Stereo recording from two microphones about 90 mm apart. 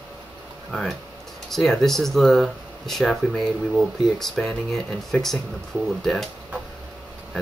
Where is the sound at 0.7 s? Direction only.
Centre (ahead or behind).